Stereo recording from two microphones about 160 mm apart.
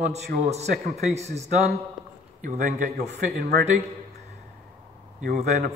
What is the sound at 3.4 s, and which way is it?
Speech, 80° right.